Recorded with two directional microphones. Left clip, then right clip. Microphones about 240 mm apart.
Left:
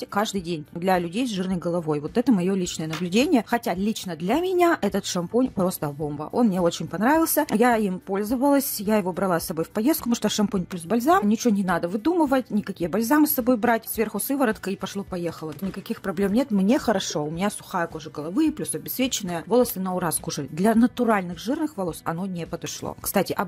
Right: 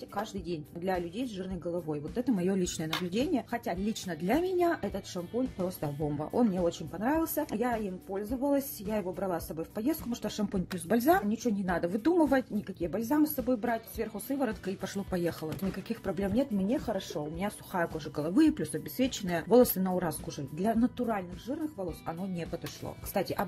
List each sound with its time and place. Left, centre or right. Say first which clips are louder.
0.1 s speech: left 10 dB; left
2.4 s speech: left 5 dB; left
3.1 s speech: left 13 dB; left
6.0 s speech: left 5 dB; centre
6.5 s speech: left 8 dB; left
10.9 s speech: left 6 dB; centre
11.2 s speech: left 9 dB; left
11.7 s speech: left 2 dB; centre
12.8 s speech: left 8 dB; left
14.8 s speech: left 4 dB; centre
15.9 s speech: left 9 dB; left
18.2 s speech: left 2 dB; centre; by 19.3 s left
19.3 s speech: left 1 dB; centre
20.1 s speech: left 8 dB; left